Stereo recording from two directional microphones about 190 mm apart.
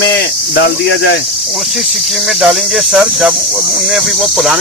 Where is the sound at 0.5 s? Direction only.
60° left (ahead or behind).